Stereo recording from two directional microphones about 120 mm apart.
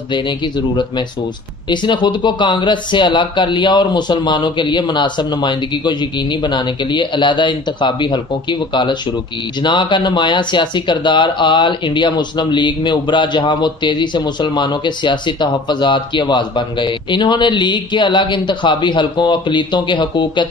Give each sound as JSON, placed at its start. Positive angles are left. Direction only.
{"t": 1.7, "sound": "speech", "side_deg": 40}